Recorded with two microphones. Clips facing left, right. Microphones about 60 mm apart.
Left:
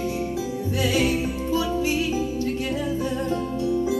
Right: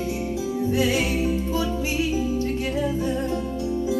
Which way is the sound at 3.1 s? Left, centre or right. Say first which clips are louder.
Even; left.